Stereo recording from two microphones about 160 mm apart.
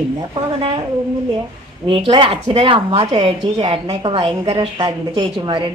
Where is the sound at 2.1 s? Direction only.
35° right (ahead or behind).